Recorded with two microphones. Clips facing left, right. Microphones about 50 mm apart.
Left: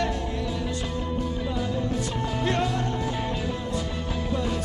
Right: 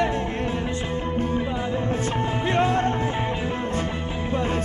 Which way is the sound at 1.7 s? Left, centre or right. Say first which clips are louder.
Right 3 dB; right.